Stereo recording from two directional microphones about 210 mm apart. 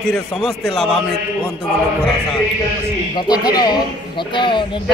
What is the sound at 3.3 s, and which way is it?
Speech, 20° left (ahead or behind).